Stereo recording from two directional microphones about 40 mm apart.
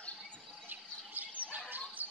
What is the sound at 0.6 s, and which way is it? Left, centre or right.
Bird, right.